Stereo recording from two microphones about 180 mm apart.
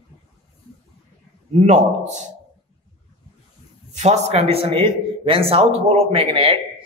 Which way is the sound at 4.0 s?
35° right (ahead or behind).